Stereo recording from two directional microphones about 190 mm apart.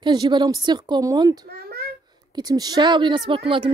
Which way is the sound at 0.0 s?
25° right (ahead or behind).